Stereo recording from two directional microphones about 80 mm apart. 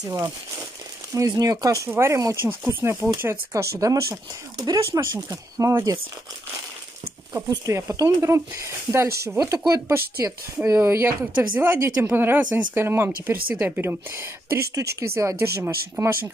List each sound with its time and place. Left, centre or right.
0.0 s speech: right
3.8 s speech: right
7.4 s speech: right
11.3 s speech: right
12.7 s speech: right
14.8 s speech: right